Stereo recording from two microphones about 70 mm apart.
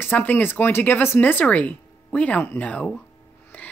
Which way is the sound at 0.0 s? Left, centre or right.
Left.